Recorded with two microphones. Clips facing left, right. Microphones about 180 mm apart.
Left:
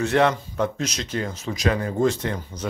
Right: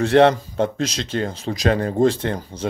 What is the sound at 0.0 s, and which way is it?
Speech, 30° right (ahead or behind).